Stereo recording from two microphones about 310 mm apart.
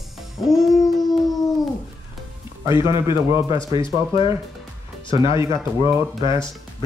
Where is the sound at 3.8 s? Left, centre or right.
Centre.